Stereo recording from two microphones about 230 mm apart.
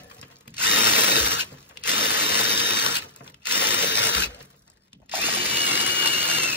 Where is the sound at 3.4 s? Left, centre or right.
Centre.